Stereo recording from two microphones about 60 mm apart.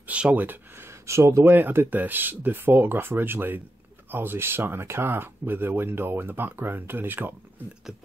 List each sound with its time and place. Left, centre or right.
0.0 s a sound: right
1.0 s speech: right
1.4 s speech: right